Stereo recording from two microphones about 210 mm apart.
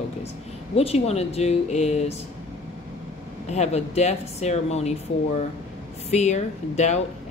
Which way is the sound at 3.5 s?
30° left (ahead or behind).